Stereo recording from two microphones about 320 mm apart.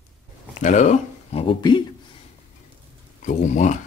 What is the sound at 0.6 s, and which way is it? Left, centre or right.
Speech, left.